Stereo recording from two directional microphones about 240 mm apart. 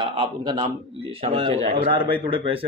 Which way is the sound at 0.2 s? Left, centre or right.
Centre.